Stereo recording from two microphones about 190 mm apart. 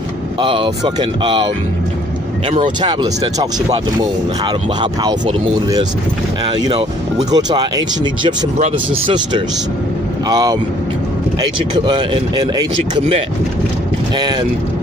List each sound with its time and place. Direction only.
0.4 s speech: 25° right (ahead or behind)
2.8 s speech: 25° right (ahead or behind)
5.0 s speech: 20° right (ahead or behind)
8.5 s speech: 35° right (ahead or behind)
10.2 s speech: 20° right (ahead or behind)